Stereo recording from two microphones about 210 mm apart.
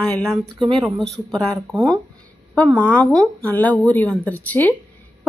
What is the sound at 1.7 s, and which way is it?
Speech, 20° right (ahead or behind).